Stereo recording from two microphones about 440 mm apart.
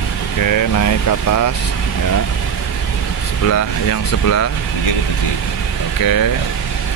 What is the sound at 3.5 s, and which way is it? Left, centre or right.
Speech, left.